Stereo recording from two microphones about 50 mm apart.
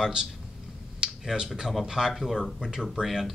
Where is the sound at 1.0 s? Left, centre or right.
Centre.